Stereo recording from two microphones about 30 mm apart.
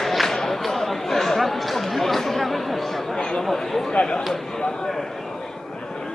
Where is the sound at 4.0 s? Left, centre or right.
Left.